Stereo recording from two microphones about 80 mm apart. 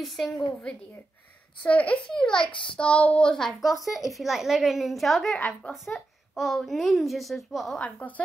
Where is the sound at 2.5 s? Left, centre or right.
Left.